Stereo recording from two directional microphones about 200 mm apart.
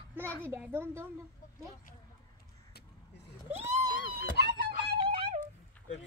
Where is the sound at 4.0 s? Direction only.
70° left (ahead or behind).